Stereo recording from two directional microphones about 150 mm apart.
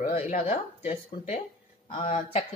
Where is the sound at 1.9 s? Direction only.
45° left (ahead or behind).